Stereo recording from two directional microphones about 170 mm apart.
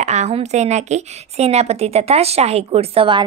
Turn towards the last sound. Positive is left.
turn(degrees=-30)  # may be behind; listen again after turning